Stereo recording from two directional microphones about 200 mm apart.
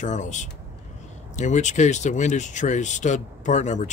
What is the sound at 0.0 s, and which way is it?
Speech, 35° left (ahead or behind).